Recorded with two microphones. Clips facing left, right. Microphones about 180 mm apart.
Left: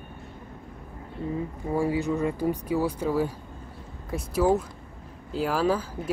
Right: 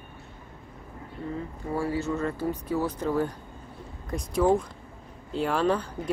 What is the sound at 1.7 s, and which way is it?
Speech, 15° left (ahead or behind).